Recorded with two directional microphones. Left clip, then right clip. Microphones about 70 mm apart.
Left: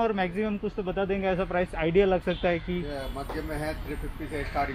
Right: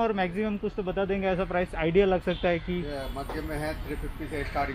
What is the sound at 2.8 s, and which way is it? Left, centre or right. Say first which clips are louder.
Speech: even; right.